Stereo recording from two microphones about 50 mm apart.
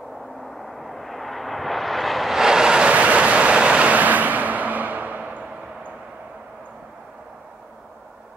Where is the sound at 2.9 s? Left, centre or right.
Right.